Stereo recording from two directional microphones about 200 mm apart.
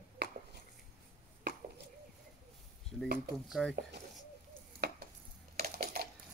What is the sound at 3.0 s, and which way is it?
Speech, 55° right (ahead or behind).